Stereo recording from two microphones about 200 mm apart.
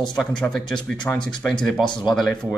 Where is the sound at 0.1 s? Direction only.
5° left (ahead or behind).